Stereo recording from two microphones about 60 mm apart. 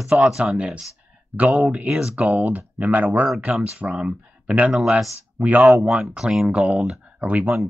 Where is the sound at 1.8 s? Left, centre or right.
Centre.